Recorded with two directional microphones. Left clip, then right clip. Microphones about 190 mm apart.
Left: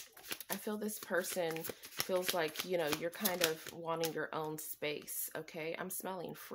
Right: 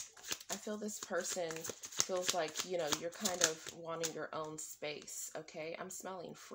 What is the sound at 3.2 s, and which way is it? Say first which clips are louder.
Speech: left 1 dB; 10° left (ahead or behind).